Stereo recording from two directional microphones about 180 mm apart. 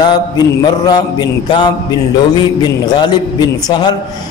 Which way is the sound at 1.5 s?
25° left (ahead or behind).